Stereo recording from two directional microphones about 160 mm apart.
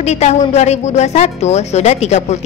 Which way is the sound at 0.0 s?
45° left (ahead or behind).